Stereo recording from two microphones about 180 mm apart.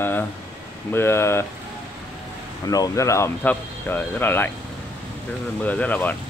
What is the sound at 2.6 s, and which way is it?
Speech, 20° left (ahead or behind).